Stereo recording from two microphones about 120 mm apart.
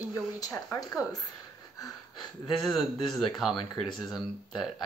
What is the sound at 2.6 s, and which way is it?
Speech, 5° left (ahead or behind).